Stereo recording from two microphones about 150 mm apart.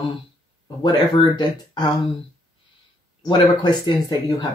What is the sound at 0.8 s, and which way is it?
Speech, 30° left (ahead or behind).